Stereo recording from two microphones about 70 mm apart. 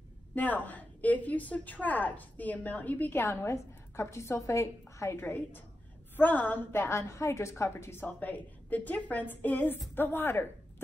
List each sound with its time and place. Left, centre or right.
0.3 s a woman's voice: left
5.2 s a woman's voice: left
6.7 s a woman's voice: left